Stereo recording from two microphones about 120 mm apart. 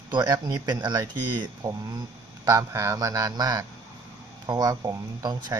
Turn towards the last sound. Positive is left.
turn(degrees=-35)  # may be behind; listen again after turning